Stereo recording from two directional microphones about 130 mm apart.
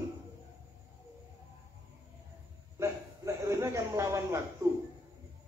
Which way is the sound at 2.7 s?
20° right (ahead or behind).